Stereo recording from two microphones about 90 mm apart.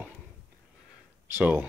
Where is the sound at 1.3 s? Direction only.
20° right (ahead or behind).